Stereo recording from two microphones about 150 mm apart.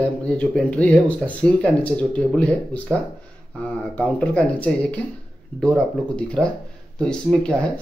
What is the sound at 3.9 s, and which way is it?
Speech, 10° left (ahead or behind).